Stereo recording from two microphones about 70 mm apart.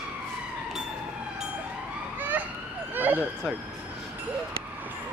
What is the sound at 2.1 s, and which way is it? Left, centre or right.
Emergency vehicle, right.